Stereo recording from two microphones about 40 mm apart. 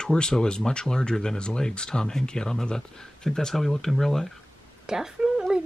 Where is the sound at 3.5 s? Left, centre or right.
Centre.